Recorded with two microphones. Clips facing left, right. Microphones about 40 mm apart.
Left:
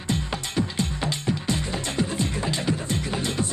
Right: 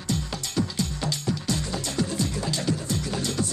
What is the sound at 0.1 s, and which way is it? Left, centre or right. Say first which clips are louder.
Music: left 2 dB; left.